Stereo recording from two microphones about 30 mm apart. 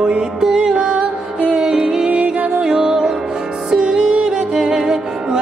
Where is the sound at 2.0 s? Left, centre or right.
Right.